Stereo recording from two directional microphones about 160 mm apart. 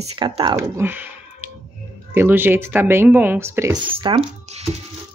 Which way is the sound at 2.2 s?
15° right (ahead or behind).